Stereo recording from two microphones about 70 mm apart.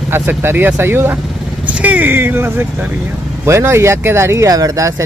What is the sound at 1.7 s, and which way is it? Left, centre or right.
Speech, right.